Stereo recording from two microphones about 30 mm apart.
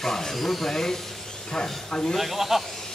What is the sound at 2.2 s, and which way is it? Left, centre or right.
Speech, centre.